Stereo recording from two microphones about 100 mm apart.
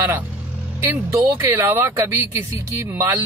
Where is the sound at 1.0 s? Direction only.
30° right (ahead or behind).